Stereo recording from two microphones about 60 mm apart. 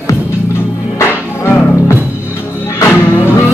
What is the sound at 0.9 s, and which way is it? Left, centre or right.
Music, left.